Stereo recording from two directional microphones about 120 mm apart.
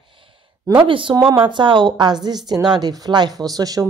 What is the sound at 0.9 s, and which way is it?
A woman's voice, 45° right (ahead or behind).